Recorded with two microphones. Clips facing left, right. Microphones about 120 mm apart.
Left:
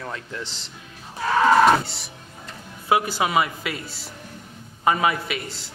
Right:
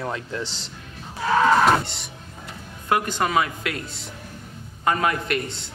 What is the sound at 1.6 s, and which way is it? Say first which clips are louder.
Music: left 2 dB; centre (ahead or behind).